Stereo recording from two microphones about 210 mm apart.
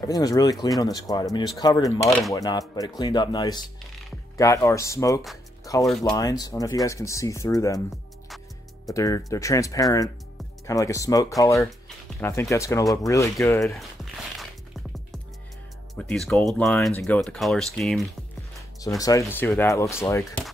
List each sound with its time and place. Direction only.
0.0 s speech: 15° left (ahead or behind)
5.7 s music: 15° left (ahead or behind)
6.0 s speech: 15° left (ahead or behind)
8.8 s speech: 15° left (ahead or behind)
16.0 s speech: 5° left (ahead or behind)
18.9 s speech: 15° left (ahead or behind)